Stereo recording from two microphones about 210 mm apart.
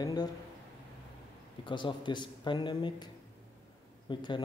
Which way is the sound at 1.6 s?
20° left (ahead or behind).